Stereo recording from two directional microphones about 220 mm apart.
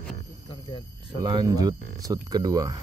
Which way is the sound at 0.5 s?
25° left (ahead or behind).